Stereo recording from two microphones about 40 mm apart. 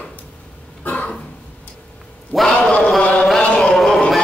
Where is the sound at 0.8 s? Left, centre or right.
Left.